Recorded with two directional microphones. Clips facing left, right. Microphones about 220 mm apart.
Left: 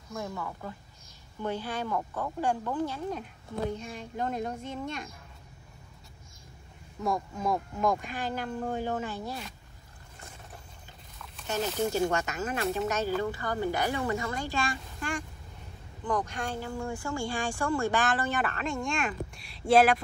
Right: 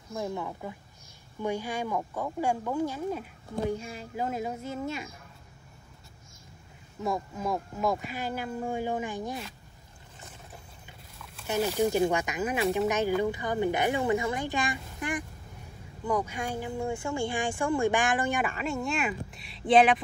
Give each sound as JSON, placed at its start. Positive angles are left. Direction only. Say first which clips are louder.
{"t": 0.1, "sound": "speech", "louder": "right 3 dB", "side_deg": -25}
{"t": 7.0, "sound": "speech", "louder": "even", "side_deg": 0}
{"t": 11.4, "sound": "speech", "louder": "right 3 dB", "side_deg": -10}